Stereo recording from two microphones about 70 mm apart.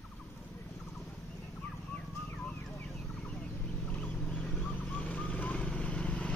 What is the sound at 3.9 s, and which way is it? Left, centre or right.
Vehicle, left.